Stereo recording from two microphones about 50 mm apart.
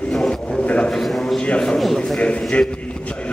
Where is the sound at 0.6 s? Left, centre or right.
Left.